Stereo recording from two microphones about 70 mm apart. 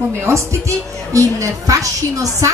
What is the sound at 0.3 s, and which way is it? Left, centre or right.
A woman's voice, right.